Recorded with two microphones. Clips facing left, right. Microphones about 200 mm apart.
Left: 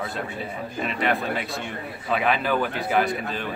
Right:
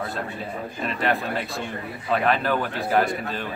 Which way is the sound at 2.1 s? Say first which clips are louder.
Right 1 dB; centre (ahead or behind).